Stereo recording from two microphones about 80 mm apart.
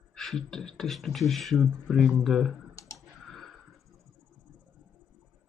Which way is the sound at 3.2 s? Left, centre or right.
Centre.